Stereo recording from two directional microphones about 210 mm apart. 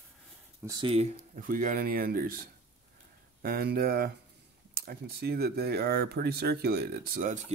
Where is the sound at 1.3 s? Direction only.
40° right (ahead or behind).